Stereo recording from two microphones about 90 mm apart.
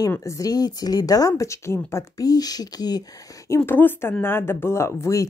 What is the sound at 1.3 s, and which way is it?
Speech, 30° left (ahead or behind).